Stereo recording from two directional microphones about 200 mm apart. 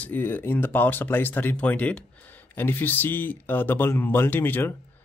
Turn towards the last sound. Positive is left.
turn(degrees=10)  # may be behind; listen again after turning